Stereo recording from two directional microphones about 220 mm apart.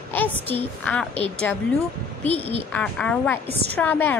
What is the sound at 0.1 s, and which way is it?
A woman's voice, 10° left (ahead or behind).